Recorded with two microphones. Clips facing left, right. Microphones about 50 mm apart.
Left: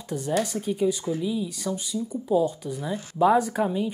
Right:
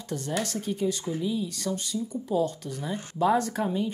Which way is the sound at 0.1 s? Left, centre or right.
Centre.